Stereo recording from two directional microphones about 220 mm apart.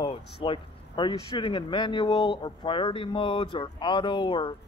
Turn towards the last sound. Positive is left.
turn(degrees=20)  # may be behind; listen again after turning